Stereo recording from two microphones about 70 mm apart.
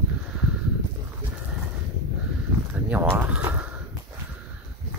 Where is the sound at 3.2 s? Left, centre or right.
Right.